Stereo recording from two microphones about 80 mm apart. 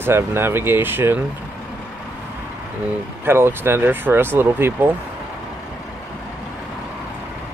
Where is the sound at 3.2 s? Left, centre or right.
Right.